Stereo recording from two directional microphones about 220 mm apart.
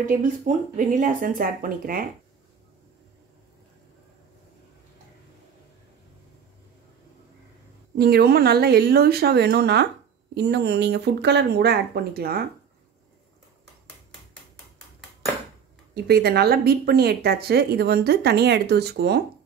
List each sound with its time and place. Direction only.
0.0 s speech: 35° right (ahead or behind)
8.0 s speech: 45° right (ahead or behind)
15.9 s speech: 45° right (ahead or behind)